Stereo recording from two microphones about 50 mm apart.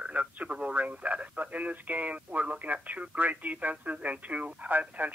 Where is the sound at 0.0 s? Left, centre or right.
Right.